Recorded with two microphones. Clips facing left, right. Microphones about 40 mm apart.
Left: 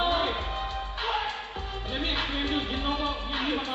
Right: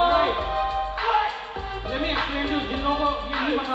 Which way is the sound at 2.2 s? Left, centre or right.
Centre.